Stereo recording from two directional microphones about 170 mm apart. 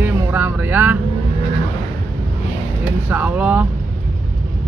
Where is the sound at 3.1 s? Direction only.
10° right (ahead or behind).